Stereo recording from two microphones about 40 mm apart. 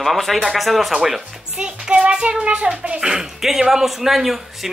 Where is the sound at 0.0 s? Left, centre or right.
Centre.